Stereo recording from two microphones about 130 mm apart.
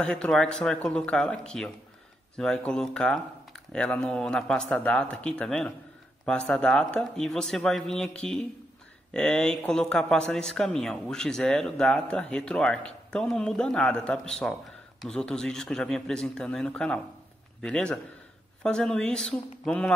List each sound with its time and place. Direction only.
0.0 s speech: 10° left (ahead or behind)